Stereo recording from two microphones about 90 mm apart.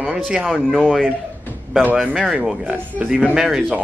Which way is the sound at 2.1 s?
10° right (ahead or behind).